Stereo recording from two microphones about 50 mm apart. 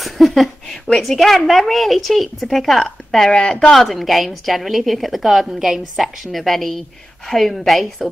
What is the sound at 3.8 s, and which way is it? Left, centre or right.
A woman's voice, centre.